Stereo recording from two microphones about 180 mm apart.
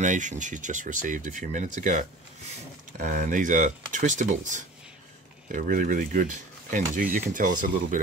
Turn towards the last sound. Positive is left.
turn(degrees=-50)  # may be behind; listen again after turning